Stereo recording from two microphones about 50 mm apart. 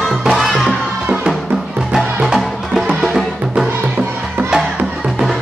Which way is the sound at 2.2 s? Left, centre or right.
Centre.